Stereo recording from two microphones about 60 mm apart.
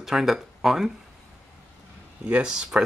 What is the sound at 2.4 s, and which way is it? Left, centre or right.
Speech, centre.